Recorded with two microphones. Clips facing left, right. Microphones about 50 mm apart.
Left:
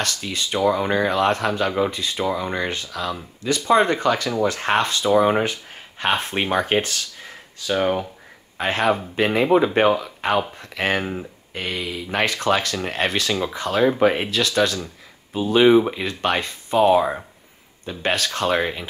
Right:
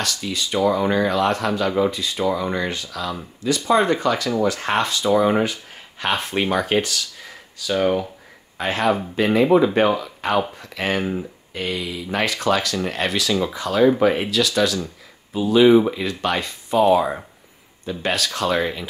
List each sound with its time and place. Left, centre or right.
0.0 s speech: left
0.6 s speech: left
0.8 s speech: left
7.7 s speech: left
8.5 s speech: left
9.8 s speech: left